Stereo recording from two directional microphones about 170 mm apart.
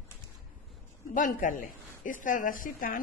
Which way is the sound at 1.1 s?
55° left (ahead or behind).